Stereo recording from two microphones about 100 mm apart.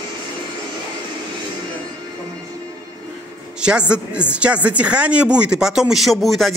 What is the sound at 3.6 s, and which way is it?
Speech, 10° right (ahead or behind).